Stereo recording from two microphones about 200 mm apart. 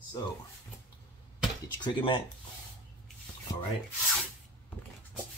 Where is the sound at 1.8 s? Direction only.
25° left (ahead or behind).